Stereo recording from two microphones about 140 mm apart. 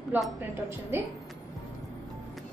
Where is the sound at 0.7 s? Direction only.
15° right (ahead or behind).